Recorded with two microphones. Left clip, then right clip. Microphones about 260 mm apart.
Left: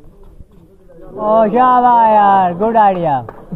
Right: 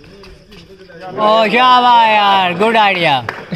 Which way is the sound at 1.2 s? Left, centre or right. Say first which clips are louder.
Right 1 dB; centre.